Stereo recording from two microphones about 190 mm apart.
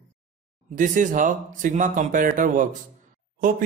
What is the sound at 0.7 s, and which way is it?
Speech, 45° right (ahead or behind).